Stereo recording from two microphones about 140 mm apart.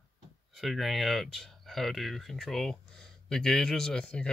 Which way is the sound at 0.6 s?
Centre (ahead or behind).